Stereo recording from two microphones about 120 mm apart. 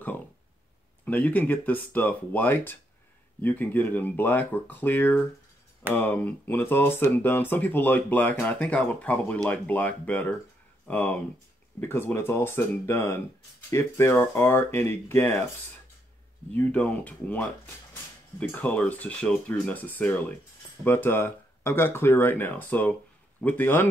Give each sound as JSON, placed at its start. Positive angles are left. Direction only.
{"t": 1.0, "sound": "speech", "side_deg": 15}
{"t": 16.5, "sound": "speech", "side_deg": 15}